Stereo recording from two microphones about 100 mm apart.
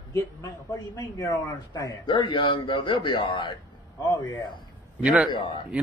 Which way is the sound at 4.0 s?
35° left (ahead or behind).